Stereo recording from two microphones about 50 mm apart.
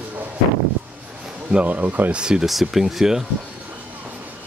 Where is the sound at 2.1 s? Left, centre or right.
Centre.